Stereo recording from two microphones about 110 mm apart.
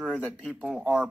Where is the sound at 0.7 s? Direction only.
10° right (ahead or behind).